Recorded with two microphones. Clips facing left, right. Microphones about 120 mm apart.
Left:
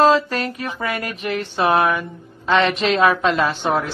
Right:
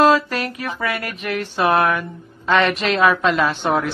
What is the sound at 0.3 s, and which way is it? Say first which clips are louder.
Speech: even; 5° right (ahead or behind).